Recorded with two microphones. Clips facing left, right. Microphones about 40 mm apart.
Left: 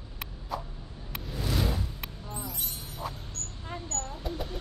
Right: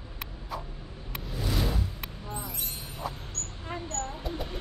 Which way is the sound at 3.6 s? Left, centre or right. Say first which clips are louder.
Right 3 dB; right.